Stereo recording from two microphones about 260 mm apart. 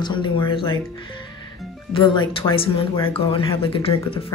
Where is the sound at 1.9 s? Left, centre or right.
Centre.